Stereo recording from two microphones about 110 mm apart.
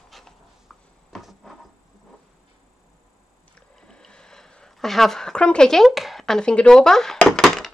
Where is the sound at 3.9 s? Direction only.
5° left (ahead or behind).